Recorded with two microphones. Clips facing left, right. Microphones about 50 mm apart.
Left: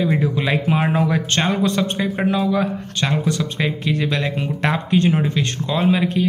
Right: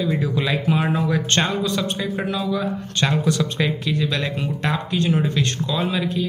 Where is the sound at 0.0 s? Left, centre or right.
Left.